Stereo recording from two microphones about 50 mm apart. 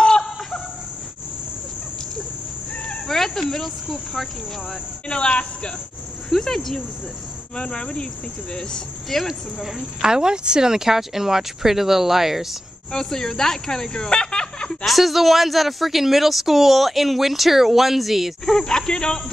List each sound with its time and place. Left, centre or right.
0.0 s a sound: centre
2.7 s cricket: left
3.1 s cricket: centre
3.9 s speech: centre
5.0 s speech: left
6.3 s speech: centre
7.5 s speech: left
9.3 s speech: centre
12.9 s speech: centre
14.9 s speech: centre
18.4 s speech: centre